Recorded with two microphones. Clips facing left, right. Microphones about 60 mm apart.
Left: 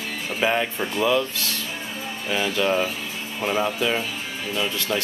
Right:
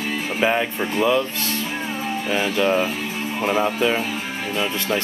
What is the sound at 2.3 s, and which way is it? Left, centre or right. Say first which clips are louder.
Speech: right 2 dB; centre.